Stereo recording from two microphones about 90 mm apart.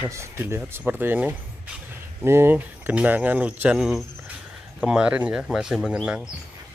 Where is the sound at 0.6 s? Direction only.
20° right (ahead or behind).